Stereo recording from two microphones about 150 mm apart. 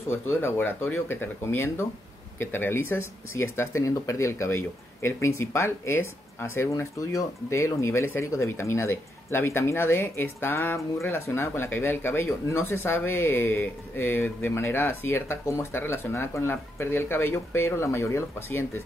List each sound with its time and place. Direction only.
0.3 s speech: 15° left (ahead or behind)